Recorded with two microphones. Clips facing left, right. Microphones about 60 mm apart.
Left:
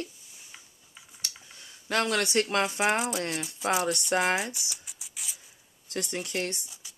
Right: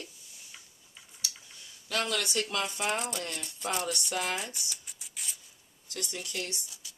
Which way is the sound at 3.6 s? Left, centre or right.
Left.